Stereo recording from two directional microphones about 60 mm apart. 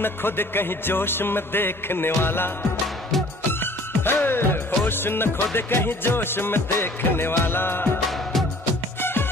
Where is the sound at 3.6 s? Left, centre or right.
Left.